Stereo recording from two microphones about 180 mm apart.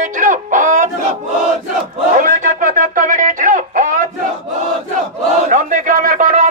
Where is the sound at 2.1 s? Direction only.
45° right (ahead or behind).